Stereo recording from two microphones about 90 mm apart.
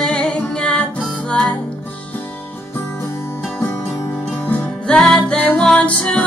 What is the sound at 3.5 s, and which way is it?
Music, 25° left (ahead or behind).